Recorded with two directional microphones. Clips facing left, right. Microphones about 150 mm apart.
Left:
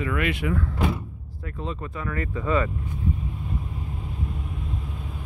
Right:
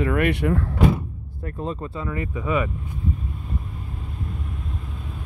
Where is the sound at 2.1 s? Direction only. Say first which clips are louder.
Even; 15° right (ahead or behind).